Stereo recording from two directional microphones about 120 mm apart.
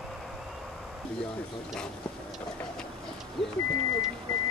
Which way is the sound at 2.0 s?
5° left (ahead or behind).